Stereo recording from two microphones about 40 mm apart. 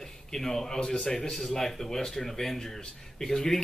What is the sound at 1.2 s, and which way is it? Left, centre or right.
A man's voice, centre.